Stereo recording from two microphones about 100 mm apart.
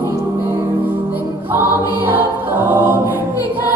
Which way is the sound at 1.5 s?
20° right (ahead or behind).